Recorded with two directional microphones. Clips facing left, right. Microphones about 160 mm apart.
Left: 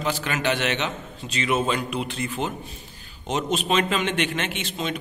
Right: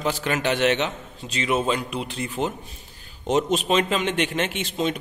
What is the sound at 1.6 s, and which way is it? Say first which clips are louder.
A man's voice: even; 25° right (ahead or behind).